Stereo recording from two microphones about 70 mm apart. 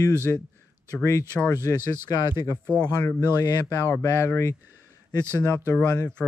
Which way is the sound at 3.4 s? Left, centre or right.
Left.